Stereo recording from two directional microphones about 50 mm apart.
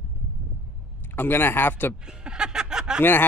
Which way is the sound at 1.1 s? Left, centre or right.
Left.